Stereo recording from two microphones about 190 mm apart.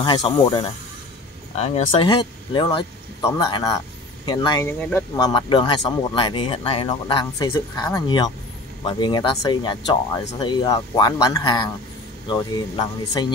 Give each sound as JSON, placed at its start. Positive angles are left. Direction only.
{"t": 0.0, "sound": "speech", "side_deg": 20}